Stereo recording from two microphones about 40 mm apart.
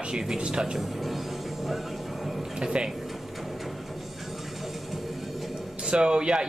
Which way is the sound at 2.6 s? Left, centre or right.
Centre.